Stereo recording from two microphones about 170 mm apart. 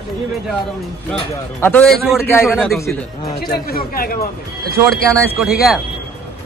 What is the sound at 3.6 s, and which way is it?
Speech, 60° left (ahead or behind).